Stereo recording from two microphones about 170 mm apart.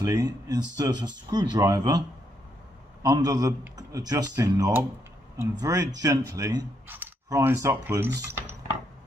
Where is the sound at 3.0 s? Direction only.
20° right (ahead or behind).